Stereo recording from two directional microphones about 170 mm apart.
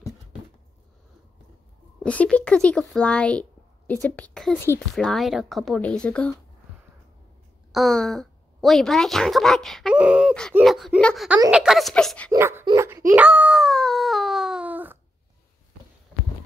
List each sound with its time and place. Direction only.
2.0 s speech: 5° left (ahead or behind)
7.7 s speech: centre (ahead or behind)
12.3 s a child's voice: 15° right (ahead or behind)
13.1 s a sound: 10° right (ahead or behind)